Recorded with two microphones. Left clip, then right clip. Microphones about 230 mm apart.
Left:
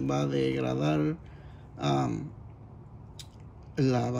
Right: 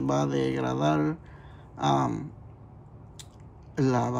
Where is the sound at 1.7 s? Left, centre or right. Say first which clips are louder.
Right 4 dB; centre.